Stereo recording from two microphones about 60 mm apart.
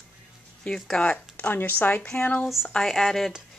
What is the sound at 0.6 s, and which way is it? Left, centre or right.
Speech, centre.